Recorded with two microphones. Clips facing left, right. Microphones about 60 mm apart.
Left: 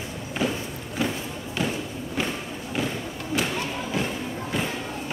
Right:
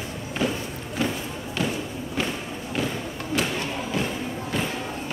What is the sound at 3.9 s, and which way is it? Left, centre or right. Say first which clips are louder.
Thump: even; centre.